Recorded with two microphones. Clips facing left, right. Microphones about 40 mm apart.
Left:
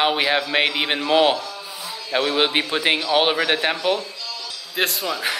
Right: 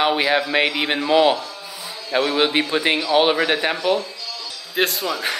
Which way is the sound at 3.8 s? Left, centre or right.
Left.